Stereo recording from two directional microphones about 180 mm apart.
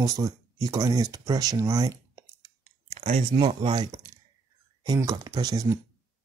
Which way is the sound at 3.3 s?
20° right (ahead or behind).